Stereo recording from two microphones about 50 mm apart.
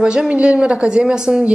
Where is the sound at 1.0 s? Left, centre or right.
Centre.